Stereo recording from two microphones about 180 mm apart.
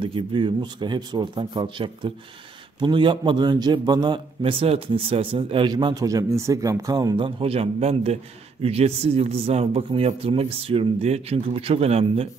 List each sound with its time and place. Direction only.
0.0 s a man's voice: 30° right (ahead or behind)